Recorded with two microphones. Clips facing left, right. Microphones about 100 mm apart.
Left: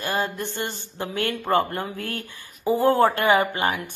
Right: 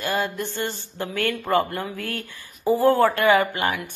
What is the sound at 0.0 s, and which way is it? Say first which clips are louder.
Speech: right 1 dB; 20° left (ahead or behind).